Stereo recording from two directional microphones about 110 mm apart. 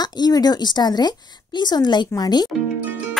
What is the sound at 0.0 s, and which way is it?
Speech, 40° left (ahead or behind).